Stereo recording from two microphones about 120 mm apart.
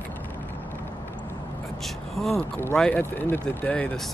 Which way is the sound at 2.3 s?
20° left (ahead or behind).